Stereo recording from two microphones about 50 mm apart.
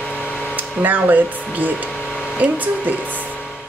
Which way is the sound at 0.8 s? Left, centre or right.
Right.